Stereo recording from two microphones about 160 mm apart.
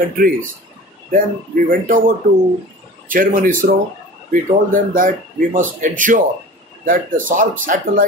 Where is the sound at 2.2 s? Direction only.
60° right (ahead or behind).